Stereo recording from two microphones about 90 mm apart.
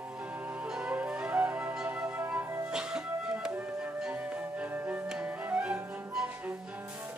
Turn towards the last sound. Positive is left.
turn(degrees=-10)  # may be behind; listen again after turning